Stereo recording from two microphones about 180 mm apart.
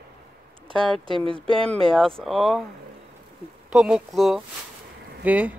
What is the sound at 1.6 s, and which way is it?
Speech, 5° left (ahead or behind).